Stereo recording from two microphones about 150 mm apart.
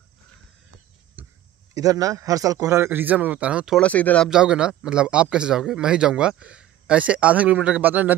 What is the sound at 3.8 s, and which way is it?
Speech, 10° left (ahead or behind).